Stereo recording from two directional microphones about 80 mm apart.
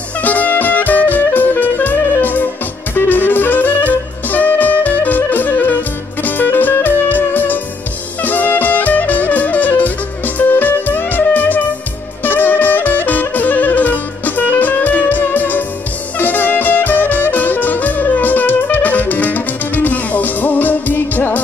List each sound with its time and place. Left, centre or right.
0.2 s music: left